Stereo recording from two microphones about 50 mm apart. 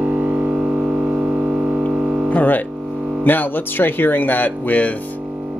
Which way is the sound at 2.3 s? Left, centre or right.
Left.